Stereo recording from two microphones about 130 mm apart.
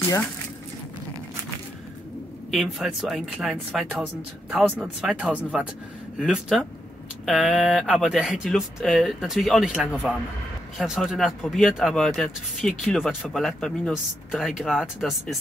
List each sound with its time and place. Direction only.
0.0 s speech: 20° left (ahead or behind)
2.5 s speech: centre (ahead or behind)
7.9 s speech: 5° left (ahead or behind)